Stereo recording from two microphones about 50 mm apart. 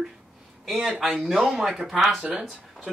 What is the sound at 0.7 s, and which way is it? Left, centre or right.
Speech, centre.